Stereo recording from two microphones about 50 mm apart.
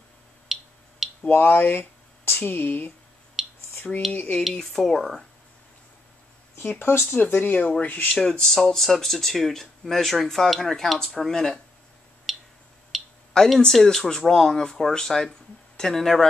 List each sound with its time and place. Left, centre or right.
0.5 s a sound: centre
1.3 s speech: left
3.4 s a sound: centre
4.1 s speech: left
4.6 s speech: centre
6.5 s speech: left
8.1 s speech: centre
12.3 s a sound: centre
13.3 s speech: centre